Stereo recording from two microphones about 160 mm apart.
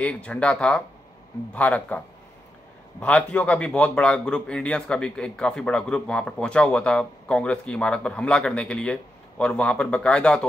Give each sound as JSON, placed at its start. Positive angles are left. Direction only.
{"t": 0.0, "sound": "speech", "side_deg": 5}
{"t": 3.0, "sound": "speech", "side_deg": 5}